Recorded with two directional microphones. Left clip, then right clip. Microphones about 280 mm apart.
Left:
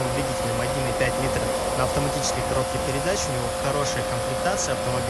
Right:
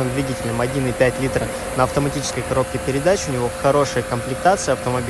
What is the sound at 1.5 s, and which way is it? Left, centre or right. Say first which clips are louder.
Speech: right 3 dB; left.